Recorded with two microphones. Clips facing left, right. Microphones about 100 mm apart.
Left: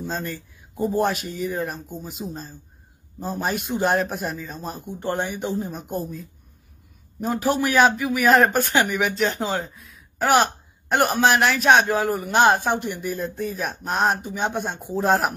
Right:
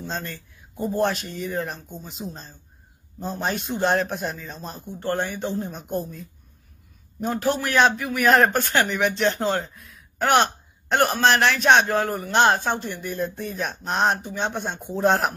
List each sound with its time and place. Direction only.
0.0 s speech: 5° left (ahead or behind)
5.6 s speech: 5° left (ahead or behind)
13.1 s speech: centre (ahead or behind)